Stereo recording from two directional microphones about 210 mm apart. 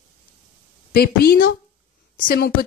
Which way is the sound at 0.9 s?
45° left (ahead or behind).